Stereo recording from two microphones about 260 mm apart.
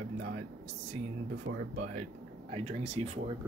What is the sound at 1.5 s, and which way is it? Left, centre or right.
Speech, right.